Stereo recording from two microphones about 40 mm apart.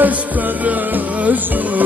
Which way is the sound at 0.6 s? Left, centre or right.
Right.